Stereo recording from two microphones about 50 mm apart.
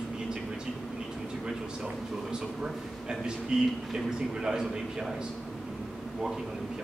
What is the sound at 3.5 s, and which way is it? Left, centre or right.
A man's voice, centre.